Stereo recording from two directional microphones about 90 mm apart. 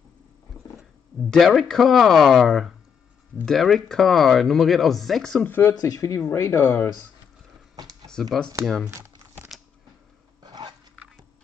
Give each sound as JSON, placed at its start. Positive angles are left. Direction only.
{"t": 0.7, "sound": "speech", "side_deg": 0}
{"t": 5.7, "sound": "speech", "side_deg": 40}
{"t": 8.1, "sound": "speech", "side_deg": 5}
{"t": 8.9, "sound": "crumpling", "side_deg": -30}
{"t": 10.4, "sound": "dog", "side_deg": -50}